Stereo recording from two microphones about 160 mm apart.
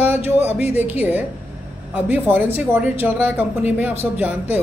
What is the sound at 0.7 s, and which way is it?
Speech, 10° right (ahead or behind).